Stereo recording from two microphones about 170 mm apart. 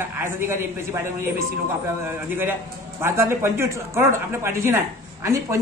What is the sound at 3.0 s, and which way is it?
A man's voice, 15° right (ahead or behind).